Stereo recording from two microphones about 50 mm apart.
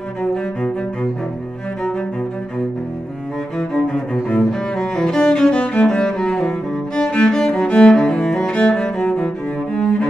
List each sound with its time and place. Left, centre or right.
0.3 s cello: centre
3.5 s cello: centre
7.0 s music: centre
7.9 s cello: centre